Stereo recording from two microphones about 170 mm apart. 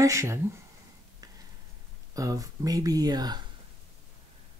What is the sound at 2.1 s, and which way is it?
Speech, 20° right (ahead or behind).